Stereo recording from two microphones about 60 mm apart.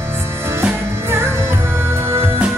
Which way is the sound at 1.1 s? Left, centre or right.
Right.